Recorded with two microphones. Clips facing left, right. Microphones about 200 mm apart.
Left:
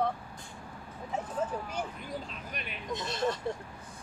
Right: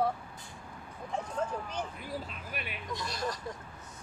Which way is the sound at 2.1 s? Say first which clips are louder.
Even; 5° right (ahead or behind).